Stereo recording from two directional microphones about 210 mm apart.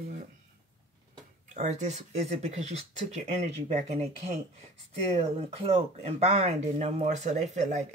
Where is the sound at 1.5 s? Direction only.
35° right (ahead or behind).